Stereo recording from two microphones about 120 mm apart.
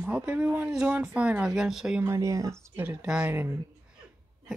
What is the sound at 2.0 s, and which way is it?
Speech, 25° right (ahead or behind).